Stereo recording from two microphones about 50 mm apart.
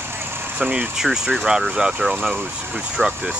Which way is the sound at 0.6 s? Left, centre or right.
Right.